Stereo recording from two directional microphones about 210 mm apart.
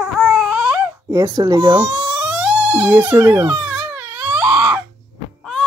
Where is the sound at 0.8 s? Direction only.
15° right (ahead or behind).